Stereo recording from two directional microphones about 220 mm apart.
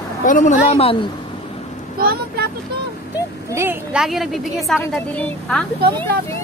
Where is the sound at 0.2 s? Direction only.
35° left (ahead or behind).